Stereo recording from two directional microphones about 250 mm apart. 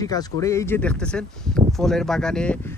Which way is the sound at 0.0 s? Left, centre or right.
Centre.